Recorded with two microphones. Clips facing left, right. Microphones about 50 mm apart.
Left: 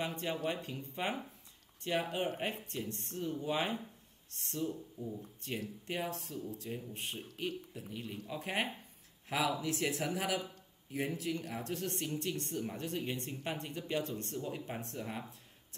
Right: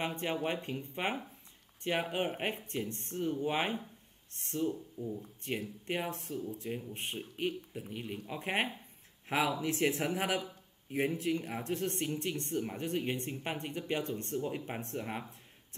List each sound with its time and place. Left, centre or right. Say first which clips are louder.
0.0 s speech: right 2 dB; right
4.6 s speech: right 4 dB; centre
5.9 s speech: right 3 dB; right